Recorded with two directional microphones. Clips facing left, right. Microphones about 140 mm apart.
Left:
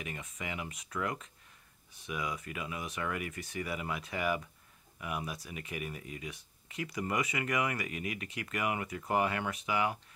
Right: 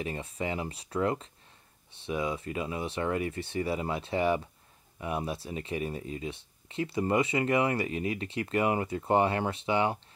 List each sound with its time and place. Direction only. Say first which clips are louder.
0.0 s speech: right 8 dB; 30° right (ahead or behind)